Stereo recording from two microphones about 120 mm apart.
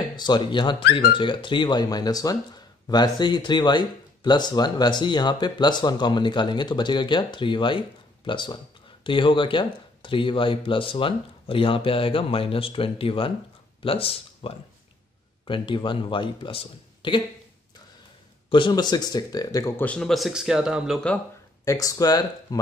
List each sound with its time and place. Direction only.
0.1 s speech: 40° left (ahead or behind)
18.5 s speech: 40° left (ahead or behind)
19.8 s speech: 10° left (ahead or behind)
21.6 s speech: 30° left (ahead or behind)